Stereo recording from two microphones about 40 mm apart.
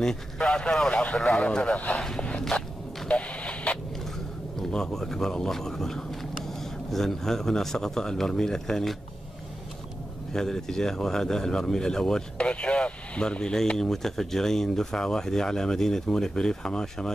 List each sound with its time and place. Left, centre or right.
0.4 s a man's voice: left
2.0 s speech: centre
3.1 s radio: left
4.7 s speech: centre
10.3 s speech: centre
12.4 s speech: left